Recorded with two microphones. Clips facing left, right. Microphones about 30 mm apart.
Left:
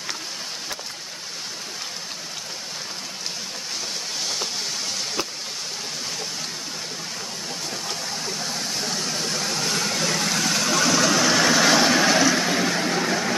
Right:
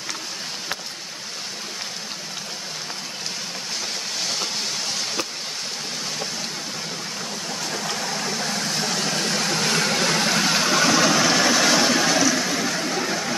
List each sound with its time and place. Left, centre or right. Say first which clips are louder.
9.0 s vehicle: right 3 dB; right
10.3 s vehicle: right 2 dB; right; by 13.3 s centre